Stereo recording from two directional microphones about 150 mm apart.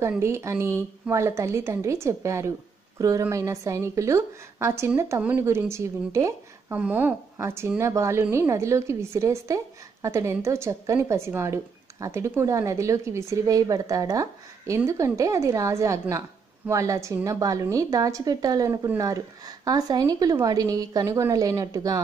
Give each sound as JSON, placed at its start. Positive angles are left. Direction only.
{"t": 0.2, "sound": "a woman's voice", "side_deg": -20}